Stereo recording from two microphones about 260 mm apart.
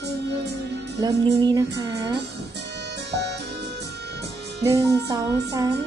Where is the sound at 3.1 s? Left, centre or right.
Right.